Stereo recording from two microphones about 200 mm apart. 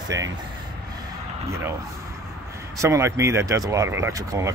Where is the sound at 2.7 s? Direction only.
15° right (ahead or behind).